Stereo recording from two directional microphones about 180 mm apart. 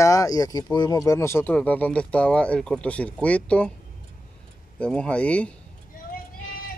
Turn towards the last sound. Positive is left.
turn(degrees=5)  # may be behind; listen again after turning